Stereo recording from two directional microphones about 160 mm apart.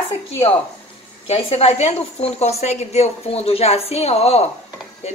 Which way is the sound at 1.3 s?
40° left (ahead or behind).